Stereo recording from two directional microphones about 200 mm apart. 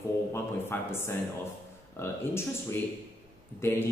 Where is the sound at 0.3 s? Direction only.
10° left (ahead or behind).